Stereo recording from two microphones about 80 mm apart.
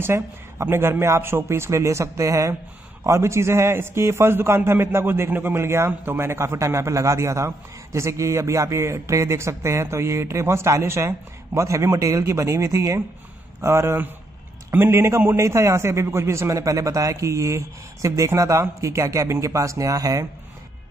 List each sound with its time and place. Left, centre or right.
0.0 s a man's voice: right